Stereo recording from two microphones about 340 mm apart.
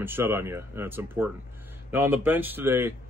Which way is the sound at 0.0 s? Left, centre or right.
Centre.